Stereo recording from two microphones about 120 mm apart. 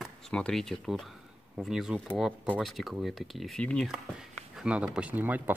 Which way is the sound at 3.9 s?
5° right (ahead or behind).